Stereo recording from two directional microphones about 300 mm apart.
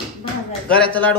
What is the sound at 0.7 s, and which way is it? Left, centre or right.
Speech, centre.